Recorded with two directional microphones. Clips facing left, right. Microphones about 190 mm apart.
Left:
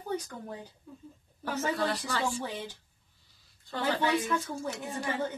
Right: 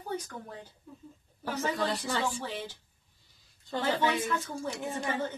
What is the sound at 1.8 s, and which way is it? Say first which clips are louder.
Speech: even; 15° right (ahead or behind).